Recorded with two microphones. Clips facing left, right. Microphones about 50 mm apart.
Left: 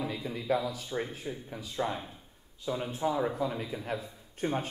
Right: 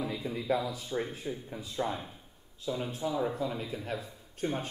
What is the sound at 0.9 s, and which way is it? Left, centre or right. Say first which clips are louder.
A man's voice: right 1 dB; centre.